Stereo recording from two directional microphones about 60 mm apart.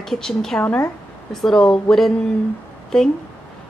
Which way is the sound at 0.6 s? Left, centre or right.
Left.